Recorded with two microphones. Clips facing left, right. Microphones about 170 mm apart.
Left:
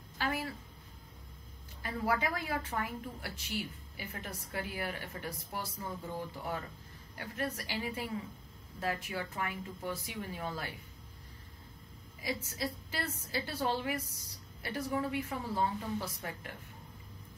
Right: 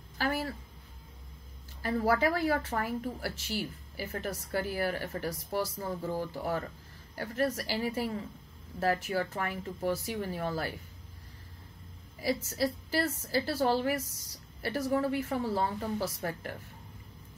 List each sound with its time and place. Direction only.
0.2 s a sound: 40° right (ahead or behind)
1.8 s a woman's voice: 40° right (ahead or behind)
12.5 s a woman's voice: 35° right (ahead or behind)